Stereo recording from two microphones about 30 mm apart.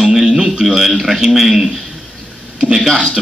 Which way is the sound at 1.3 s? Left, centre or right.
Centre.